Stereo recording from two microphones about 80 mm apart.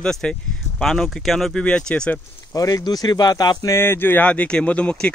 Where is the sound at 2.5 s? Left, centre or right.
Left.